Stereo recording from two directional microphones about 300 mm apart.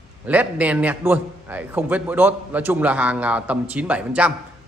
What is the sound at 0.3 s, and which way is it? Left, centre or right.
A man's voice, centre.